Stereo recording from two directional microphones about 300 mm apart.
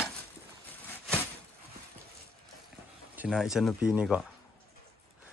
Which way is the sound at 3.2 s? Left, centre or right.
Centre.